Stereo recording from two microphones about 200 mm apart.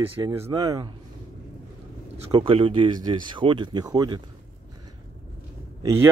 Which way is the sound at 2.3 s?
25° right (ahead or behind).